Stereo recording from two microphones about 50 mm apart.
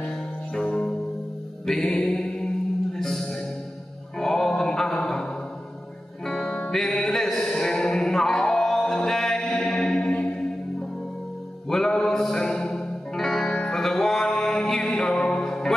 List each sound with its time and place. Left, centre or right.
0.6 s music: left
1.7 s music: centre
4.2 s mantra: centre
6.2 s music: centre
11.7 s music: centre
14.5 s mantra: centre
15.1 s music: centre